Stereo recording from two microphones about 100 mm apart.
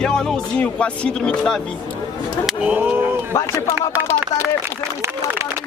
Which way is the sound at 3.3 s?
25° left (ahead or behind).